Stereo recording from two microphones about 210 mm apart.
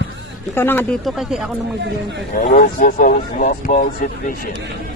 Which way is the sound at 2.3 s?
40° left (ahead or behind).